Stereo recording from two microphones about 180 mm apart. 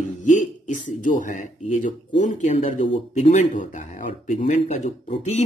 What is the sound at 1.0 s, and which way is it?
Speech, 45° left (ahead or behind).